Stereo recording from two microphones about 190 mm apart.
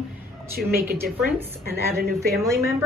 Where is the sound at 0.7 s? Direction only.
55° right (ahead or behind).